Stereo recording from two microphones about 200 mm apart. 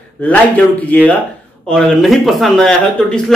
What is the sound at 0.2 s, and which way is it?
Speech, 10° left (ahead or behind).